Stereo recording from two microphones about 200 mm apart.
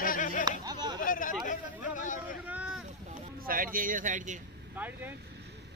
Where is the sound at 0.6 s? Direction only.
20° right (ahead or behind).